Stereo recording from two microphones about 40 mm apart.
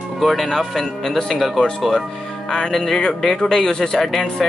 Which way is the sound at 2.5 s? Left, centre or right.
Centre.